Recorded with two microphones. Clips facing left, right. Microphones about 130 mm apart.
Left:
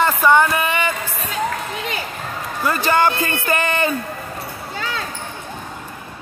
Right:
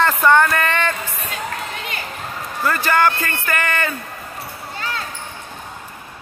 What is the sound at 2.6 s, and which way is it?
A man's voice, 20° left (ahead or behind).